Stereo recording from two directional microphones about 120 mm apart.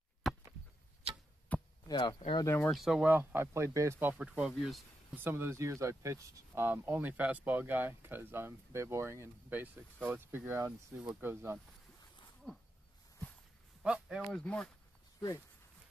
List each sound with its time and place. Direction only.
1.5 s chop: 10° left (ahead or behind)
1.9 s speech: 40° left (ahead or behind)
2.4 s speech: 15° left (ahead or behind)
2.7 s speech: centre (ahead or behind)
3.1 s speech: 15° right (ahead or behind)
4.1 s speech: 5° right (ahead or behind)
5.1 s speech: 15° right (ahead or behind)
12.4 s a sound: 5° left (ahead or behind)
13.8 s speech: 10° right (ahead or behind)
14.3 s speech: 10° left (ahead or behind)